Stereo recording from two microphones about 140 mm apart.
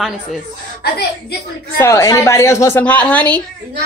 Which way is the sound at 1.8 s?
20° left (ahead or behind).